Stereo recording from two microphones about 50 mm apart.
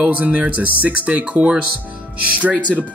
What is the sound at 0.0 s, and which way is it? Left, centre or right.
Speech, right.